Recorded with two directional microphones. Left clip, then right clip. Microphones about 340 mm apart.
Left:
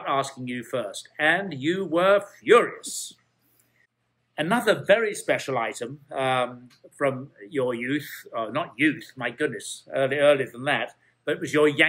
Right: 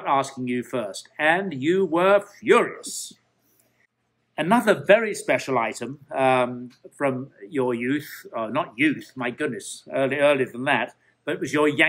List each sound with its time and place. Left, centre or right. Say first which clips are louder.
0.0 s speech: right 3 dB; centre
2.8 s speech: right 1 dB; right
4.4 s speech: right 3 dB; centre